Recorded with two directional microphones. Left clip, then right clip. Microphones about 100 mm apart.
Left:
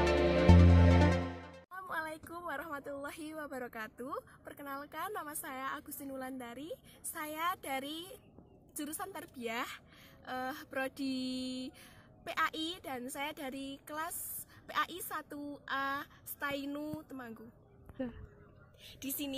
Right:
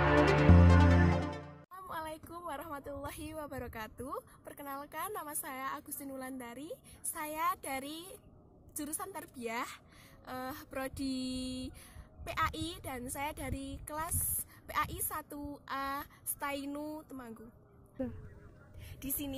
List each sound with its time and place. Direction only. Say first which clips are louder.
0.4 s music: right 1 dB; centre (ahead or behind)
1.7 s a woman's voice: left 2 dB; 30° right (ahead or behind)
18.9 s speech: left 1 dB; centre (ahead or behind)